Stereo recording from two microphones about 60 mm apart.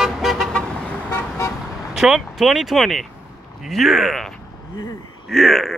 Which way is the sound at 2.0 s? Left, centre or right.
Centre.